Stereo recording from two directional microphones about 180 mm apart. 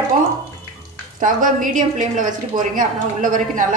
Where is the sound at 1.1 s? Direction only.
45° right (ahead or behind).